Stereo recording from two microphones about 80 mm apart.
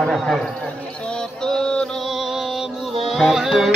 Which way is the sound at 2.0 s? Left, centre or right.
Centre.